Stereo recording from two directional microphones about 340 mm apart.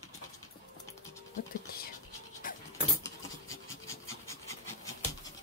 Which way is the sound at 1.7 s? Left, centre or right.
Left.